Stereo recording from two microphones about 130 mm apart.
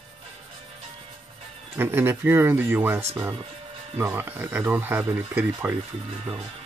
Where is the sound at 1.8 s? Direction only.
15° right (ahead or behind).